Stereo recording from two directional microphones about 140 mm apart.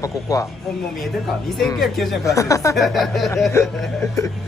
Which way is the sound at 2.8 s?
Centre (ahead or behind).